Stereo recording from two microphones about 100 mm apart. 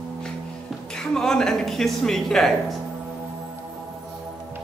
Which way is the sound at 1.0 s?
5° left (ahead or behind).